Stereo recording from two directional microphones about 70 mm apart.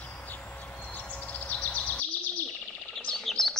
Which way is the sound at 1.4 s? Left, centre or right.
Left.